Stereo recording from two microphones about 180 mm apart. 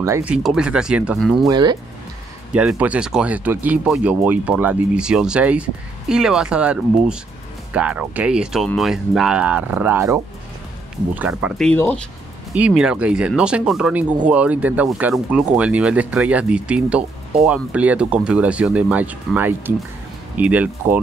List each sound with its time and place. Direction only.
0.0 s speech: 10° right (ahead or behind)
1.5 s speech: 25° right (ahead or behind)
2.5 s speech: 5° right (ahead or behind)